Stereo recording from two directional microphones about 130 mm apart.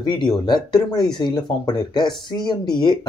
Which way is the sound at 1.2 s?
35° left (ahead or behind).